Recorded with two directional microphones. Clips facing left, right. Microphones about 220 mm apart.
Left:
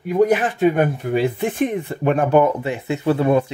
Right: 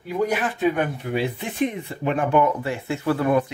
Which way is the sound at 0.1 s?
45° left (ahead or behind).